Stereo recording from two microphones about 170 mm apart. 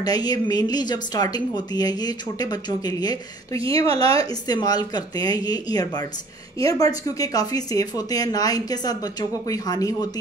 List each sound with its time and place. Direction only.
0.0 s speech: 20° left (ahead or behind)
3.8 s a woman's voice: 35° right (ahead or behind)
4.2 s speech: 25° left (ahead or behind)